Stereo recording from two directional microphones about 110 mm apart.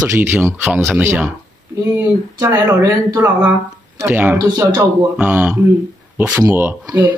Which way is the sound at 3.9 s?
20° right (ahead or behind).